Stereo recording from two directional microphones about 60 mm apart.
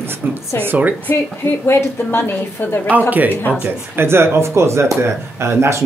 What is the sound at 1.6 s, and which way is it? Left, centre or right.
Speech, left.